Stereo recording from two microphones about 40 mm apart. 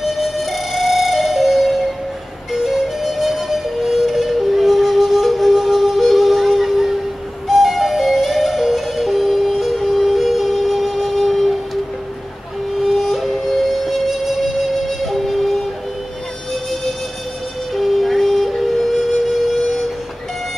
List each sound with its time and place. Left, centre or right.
0.0 s music: centre
17.7 s music: centre